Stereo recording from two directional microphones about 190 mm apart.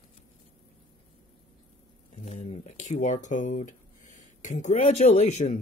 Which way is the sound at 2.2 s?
35° left (ahead or behind).